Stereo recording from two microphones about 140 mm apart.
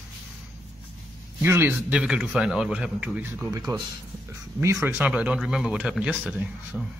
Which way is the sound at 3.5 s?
25° right (ahead or behind).